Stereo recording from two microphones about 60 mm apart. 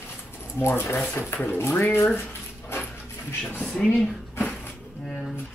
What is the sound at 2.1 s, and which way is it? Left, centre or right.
Speech, left.